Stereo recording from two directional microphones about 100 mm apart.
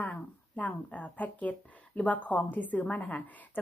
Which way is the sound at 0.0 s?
15° left (ahead or behind).